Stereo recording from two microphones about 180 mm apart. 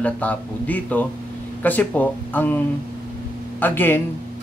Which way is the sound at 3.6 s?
10° left (ahead or behind).